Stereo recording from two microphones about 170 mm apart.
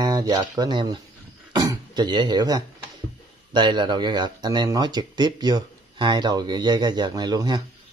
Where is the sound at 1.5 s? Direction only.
25° right (ahead or behind).